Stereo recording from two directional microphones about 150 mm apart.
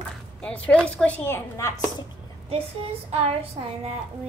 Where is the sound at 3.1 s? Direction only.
40° right (ahead or behind).